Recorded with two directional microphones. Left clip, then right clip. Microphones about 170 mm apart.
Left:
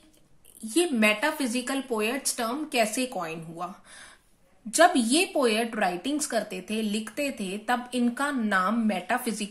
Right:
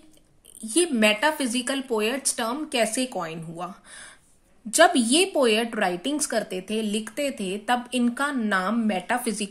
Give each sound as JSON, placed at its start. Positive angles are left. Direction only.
{"t": 0.7, "sound": "a woman's voice", "side_deg": -30}